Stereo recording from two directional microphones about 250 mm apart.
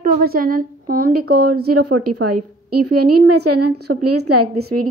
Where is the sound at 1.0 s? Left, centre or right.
Right.